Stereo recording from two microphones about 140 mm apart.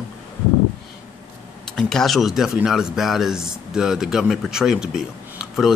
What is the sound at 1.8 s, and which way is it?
Speech, centre (ahead or behind).